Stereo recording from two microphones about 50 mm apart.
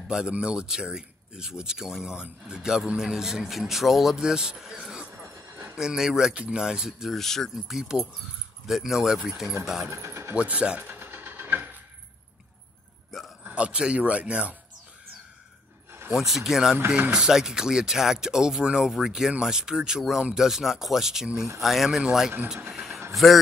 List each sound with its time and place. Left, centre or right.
0.1 s speech: centre
7.1 s speech: centre
7.5 s speech: centre
9.8 s speech: right
10.3 s speech: right
10.8 s vehicle: right
13.4 s speech: right
16.2 s speech: centre
22.7 s vehicle: centre
23.1 s speech: centre